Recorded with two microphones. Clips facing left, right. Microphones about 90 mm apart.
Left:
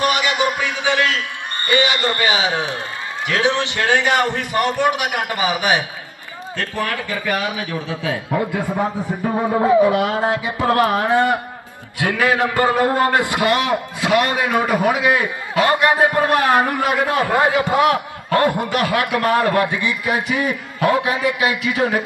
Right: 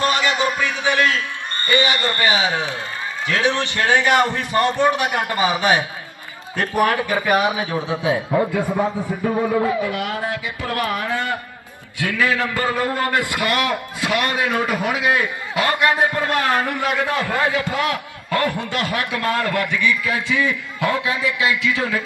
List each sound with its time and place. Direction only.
0.0 s a sound: 15° left (ahead or behind)
1.6 s a man's voice: 20° left (ahead or behind)
6.5 s a man's voice: 20° right (ahead or behind)
8.5 s a man's voice: 20° left (ahead or behind)
9.4 s a man's voice: 30° left (ahead or behind)